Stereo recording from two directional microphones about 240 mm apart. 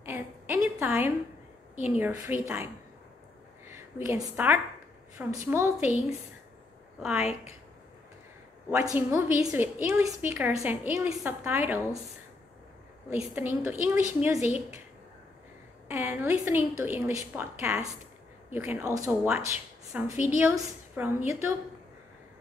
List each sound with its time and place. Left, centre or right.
0.0 s a sound: centre
1.8 s a woman's voice: centre
7.0 s a woman's voice: centre
8.6 s a woman's voice: centre
13.1 s a woman's voice: centre
15.9 s a woman's voice: centre